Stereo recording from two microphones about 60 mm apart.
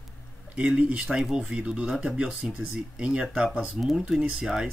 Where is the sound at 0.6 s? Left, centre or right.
Centre.